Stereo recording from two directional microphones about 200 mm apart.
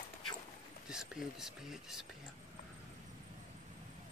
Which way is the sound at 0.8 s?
5° right (ahead or behind).